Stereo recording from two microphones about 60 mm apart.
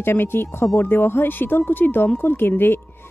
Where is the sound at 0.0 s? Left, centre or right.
Left.